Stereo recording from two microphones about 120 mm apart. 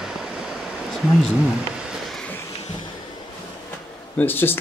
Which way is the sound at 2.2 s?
20° left (ahead or behind).